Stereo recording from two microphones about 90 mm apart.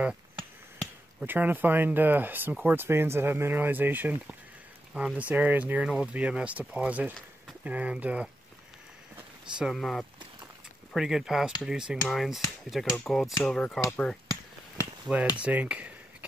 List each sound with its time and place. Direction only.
1.2 s speech: 20° right (ahead or behind)
9.6 s cutlery: centre (ahead or behind)
13.0 s speech: 5° left (ahead or behind)
15.1 s speech: 10° right (ahead or behind)
15.4 s a sound: 15° right (ahead or behind)